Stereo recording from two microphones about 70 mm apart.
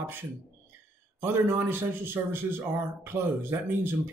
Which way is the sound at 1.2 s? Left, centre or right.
Right.